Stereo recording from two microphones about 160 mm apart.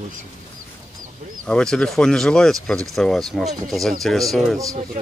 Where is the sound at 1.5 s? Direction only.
5° left (ahead or behind).